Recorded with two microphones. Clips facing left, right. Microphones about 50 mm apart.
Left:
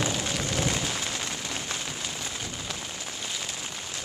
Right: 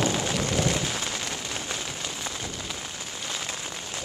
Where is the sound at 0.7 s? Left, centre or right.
Centre.